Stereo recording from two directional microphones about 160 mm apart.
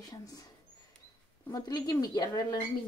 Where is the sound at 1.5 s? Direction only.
25° left (ahead or behind).